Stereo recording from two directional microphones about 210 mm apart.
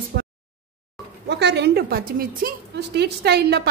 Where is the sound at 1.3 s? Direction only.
55° right (ahead or behind).